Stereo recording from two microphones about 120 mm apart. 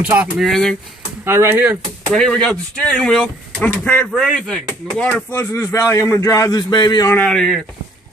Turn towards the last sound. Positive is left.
turn(degrees=5)  # may be behind; listen again after turning